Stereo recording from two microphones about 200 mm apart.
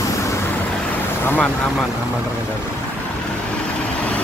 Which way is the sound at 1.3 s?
10° left (ahead or behind).